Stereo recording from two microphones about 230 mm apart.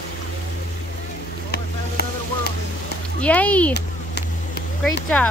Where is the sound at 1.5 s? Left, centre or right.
Left.